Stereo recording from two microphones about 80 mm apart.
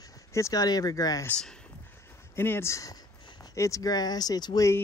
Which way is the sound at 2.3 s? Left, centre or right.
Left.